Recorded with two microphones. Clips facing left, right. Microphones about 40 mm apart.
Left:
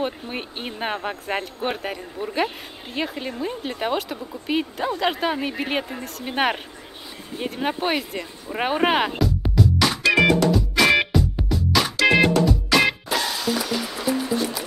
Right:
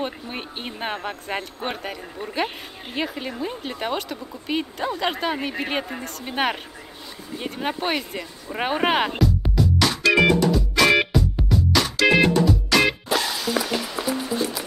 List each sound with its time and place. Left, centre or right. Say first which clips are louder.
0.0 s speech: left 2 dB; centre
9.2 s music: left 1 dB; centre
13.6 s music: right 3 dB; right